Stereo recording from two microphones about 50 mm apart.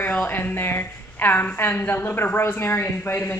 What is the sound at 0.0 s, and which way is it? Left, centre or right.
A woman's voice, left.